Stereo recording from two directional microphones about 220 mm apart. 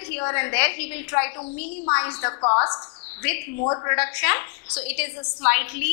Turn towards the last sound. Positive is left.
turn(degrees=10)  # may be behind; listen again after turning